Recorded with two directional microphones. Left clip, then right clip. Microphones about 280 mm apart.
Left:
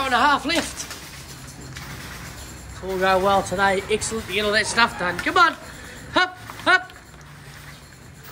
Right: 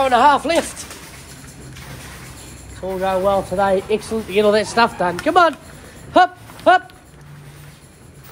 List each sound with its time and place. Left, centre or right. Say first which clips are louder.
0.0 s speech: right 6 dB; centre
3.0 s speech: right 1 dB; centre
6.1 s a sound: right 7 dB; centre